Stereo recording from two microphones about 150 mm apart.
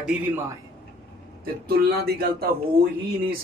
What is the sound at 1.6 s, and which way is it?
Speech, 90° right.